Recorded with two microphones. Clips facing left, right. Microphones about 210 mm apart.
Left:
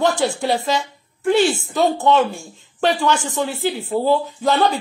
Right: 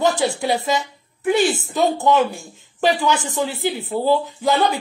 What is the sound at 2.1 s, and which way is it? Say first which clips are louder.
Speech: left 1 dB; centre (ahead or behind).